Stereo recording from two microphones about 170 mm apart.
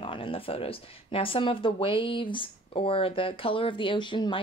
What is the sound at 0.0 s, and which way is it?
Speech, 30° left (ahead or behind).